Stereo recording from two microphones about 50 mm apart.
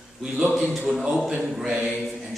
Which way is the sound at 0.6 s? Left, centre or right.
Centre.